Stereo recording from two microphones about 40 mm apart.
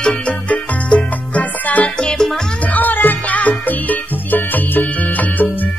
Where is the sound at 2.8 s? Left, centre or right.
Left.